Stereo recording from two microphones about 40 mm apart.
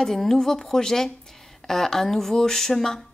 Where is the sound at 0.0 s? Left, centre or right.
Centre.